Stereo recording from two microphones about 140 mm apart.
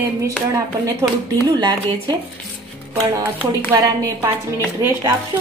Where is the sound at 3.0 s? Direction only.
20° right (ahead or behind).